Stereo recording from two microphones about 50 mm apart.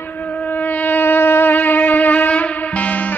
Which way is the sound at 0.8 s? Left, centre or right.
Left.